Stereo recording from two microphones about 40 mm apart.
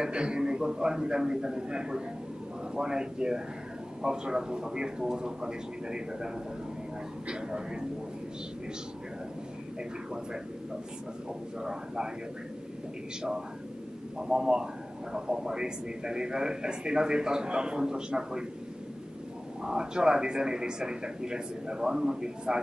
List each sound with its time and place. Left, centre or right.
0.0 s a man's voice: right
11.6 s a man's voice: centre
14.1 s a man's voice: centre
19.6 s a man's voice: centre